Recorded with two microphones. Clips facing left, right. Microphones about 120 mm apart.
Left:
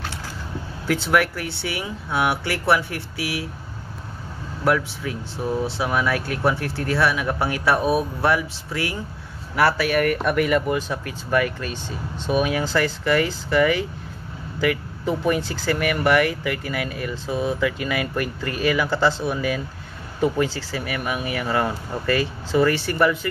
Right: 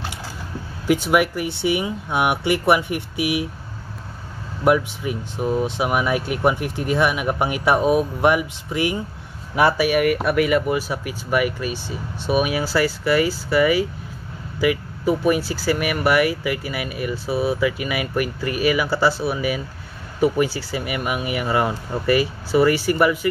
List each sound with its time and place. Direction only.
0.8 s speech: 15° right (ahead or behind)
4.6 s speech: 20° right (ahead or behind)